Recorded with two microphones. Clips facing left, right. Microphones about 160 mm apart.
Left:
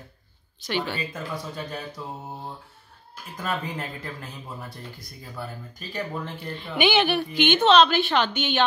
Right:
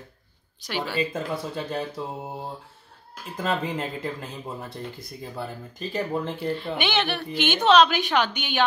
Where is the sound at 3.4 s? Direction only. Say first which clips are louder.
Right 3 dB; 25° right (ahead or behind).